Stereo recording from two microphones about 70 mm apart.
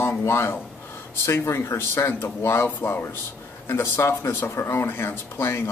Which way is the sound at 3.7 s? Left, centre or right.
Left.